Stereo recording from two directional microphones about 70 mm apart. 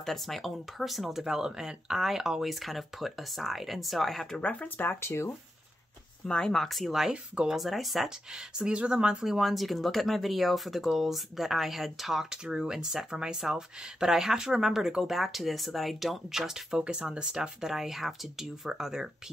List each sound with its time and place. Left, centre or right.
0.0 s speech: centre
4.4 s speech: centre
4.8 s speech: left
6.2 s speech: centre
7.6 s speech: centre